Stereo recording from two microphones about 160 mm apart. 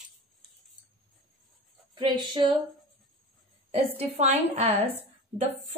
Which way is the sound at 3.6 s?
40° right (ahead or behind).